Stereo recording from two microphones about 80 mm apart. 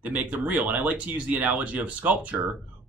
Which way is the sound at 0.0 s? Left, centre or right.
Centre.